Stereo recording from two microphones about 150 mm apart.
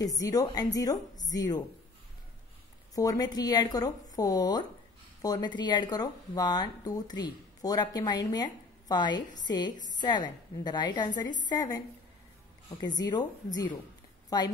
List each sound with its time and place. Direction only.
0.0 s speech: 25° left (ahead or behind)
2.9 s speech: 25° left (ahead or behind)
12.8 s speech: 25° left (ahead or behind)
14.3 s speech: 25° left (ahead or behind)